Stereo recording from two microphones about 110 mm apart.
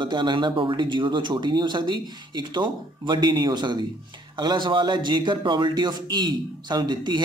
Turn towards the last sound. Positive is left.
turn(degrees=-40)  # may be behind; listen again after turning